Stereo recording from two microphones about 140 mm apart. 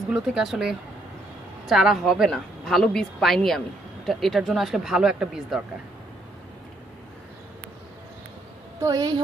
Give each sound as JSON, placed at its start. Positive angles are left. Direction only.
{"t": 0.1, "sound": "a woman's voice", "side_deg": -5}
{"t": 8.7, "sound": "a woman's voice", "side_deg": -25}